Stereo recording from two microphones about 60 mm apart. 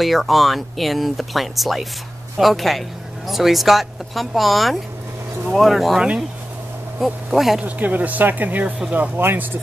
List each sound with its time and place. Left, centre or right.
0.0 s speech: centre
7.2 s speech: centre
7.6 s speech: right